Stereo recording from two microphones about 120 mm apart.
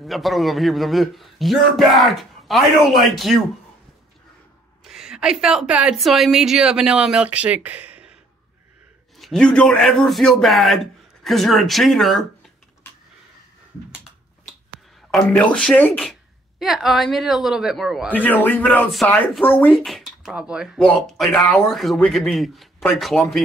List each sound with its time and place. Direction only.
0.0 s a man's voice: centre (ahead or behind)
4.8 s a woman's voice: 5° right (ahead or behind)
9.2 s a man's voice: 5° left (ahead or behind)
15.0 s a man's voice: centre (ahead or behind)
16.5 s a man's voice: centre (ahead or behind)
18.1 s a man's voice: 15° left (ahead or behind)
19.8 s a man's voice: centre (ahead or behind)